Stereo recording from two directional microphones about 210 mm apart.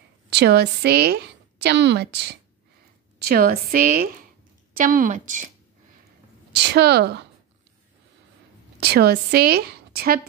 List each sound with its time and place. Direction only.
0.3 s a woman's voice: 50° right (ahead or behind)
6.5 s a woman's voice: 50° right (ahead or behind)
8.7 s a woman's voice: 50° right (ahead or behind)